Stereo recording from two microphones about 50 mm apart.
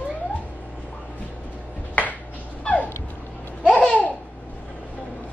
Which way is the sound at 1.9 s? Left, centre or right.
Left.